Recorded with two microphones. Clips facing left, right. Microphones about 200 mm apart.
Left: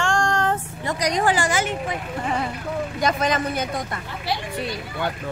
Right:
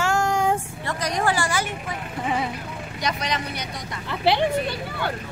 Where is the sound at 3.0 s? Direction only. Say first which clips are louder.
Left 5 dB; 50° left (ahead or behind).